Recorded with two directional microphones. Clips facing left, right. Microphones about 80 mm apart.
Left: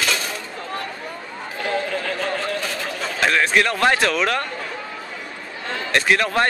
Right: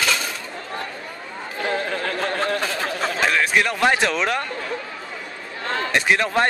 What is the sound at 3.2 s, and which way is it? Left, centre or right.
A man's voice, centre.